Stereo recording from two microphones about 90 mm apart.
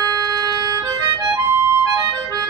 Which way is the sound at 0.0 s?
45° right (ahead or behind).